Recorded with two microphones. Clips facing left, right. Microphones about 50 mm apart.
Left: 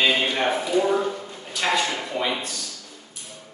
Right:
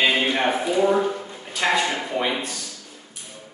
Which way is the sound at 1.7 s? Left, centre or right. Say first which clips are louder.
Right 1 dB; right.